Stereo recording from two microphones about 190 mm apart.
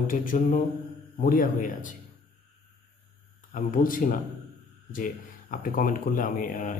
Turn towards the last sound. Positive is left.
turn(degrees=45)  # may be behind; listen again after turning